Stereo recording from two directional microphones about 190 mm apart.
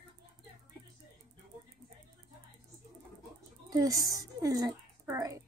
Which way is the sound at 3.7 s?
20° right (ahead or behind).